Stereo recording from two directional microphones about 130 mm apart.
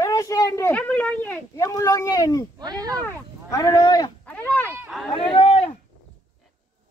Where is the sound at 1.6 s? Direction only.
25° left (ahead or behind).